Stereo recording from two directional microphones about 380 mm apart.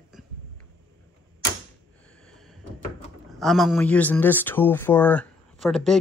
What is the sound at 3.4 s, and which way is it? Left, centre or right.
Speech, centre.